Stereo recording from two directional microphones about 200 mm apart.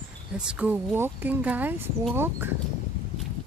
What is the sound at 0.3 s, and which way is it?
Speech, 5° right (ahead or behind).